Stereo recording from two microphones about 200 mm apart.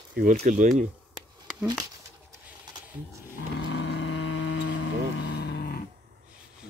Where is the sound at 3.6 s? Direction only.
60° left (ahead or behind).